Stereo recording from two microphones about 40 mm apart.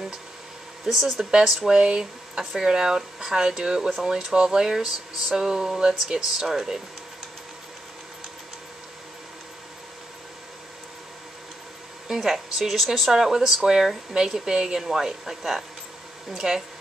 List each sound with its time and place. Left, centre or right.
1.1 s speech: centre
1.7 s speech: right
12.1 s speech: centre